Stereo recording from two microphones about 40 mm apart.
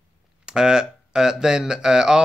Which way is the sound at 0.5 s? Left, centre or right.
Centre.